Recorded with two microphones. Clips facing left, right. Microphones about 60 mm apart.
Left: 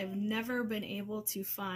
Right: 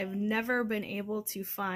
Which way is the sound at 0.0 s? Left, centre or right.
Right.